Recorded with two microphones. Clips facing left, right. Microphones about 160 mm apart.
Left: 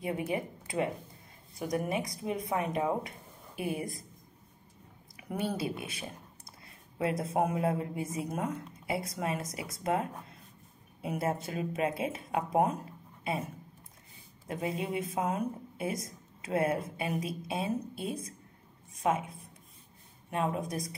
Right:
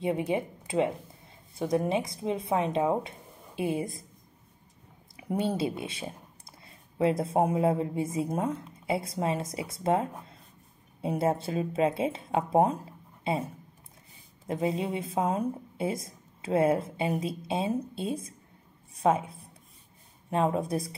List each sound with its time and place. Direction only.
0.0 s a woman's voice: 25° right (ahead or behind)
5.1 s a woman's voice: 25° right (ahead or behind)